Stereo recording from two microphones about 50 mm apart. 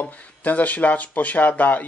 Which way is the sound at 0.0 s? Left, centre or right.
Left.